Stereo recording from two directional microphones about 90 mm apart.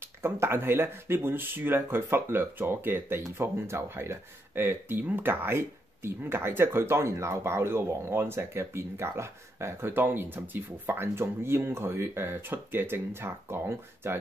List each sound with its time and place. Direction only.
0.0 s speech: 25° right (ahead or behind)